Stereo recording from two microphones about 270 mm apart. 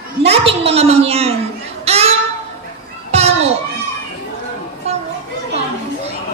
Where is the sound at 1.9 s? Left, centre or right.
Right.